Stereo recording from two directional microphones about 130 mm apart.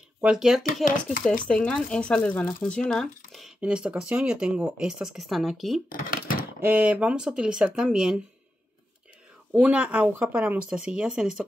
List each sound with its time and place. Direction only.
0.2 s speech: 5° right (ahead or behind)
0.8 s speech: 90° left
1.5 s speech: 5° left (ahead or behind)
6.6 s speech: 10° right (ahead or behind)
9.5 s speech: 10° right (ahead or behind)